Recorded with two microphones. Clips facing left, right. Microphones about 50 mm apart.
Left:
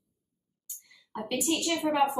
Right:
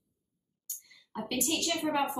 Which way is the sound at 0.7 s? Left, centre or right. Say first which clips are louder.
Left 2 dB; centre.